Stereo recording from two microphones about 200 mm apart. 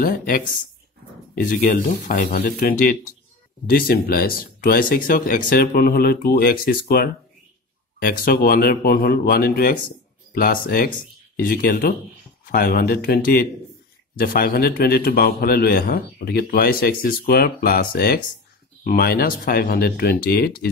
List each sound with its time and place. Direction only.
0.0 s a man's voice: 45° left (ahead or behind)